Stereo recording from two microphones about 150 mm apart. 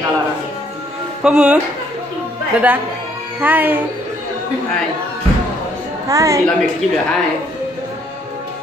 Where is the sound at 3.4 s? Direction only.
10° right (ahead or behind).